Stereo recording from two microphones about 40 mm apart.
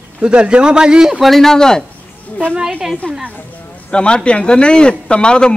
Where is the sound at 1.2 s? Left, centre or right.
Centre.